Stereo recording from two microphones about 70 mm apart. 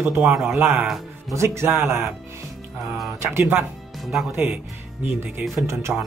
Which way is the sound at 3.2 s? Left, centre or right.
Right.